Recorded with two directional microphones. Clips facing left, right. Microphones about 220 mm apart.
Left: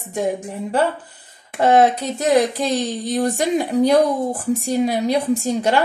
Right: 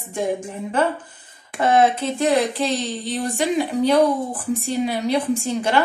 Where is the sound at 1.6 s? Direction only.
40° left (ahead or behind).